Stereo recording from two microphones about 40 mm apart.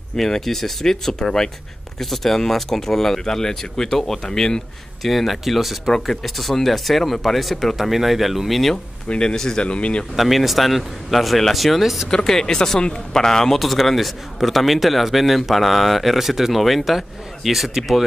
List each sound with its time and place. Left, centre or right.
0.1 s speech: centre
5.0 s a man's voice: centre
9.3 s speech: centre
9.6 s speech: left
10.1 s a man's voice: centre
12.1 s speech: centre
13.6 s a man's voice: centre